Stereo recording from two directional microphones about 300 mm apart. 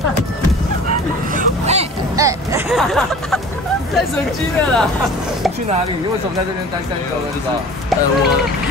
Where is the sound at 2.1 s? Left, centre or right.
Centre.